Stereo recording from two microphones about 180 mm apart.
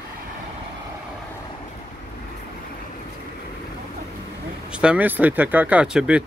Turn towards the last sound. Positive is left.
turn(degrees=-5)  # may be behind; listen again after turning